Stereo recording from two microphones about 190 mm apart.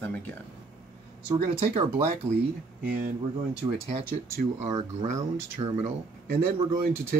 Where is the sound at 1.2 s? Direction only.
35° right (ahead or behind).